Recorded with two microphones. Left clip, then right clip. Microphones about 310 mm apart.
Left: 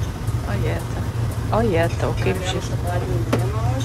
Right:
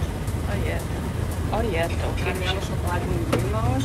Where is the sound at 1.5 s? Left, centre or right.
Centre.